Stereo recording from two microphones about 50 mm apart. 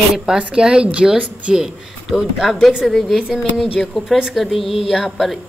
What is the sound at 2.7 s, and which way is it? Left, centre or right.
Speech, centre.